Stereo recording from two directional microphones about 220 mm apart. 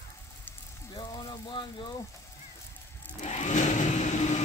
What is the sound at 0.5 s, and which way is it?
Frying, 15° left (ahead or behind).